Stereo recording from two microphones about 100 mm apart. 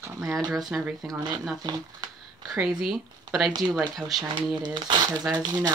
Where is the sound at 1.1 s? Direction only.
45° right (ahead or behind).